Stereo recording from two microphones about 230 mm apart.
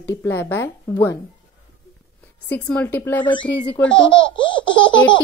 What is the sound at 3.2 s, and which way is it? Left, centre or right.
Speech, left.